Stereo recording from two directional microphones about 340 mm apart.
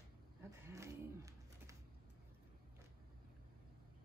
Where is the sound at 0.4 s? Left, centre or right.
Centre.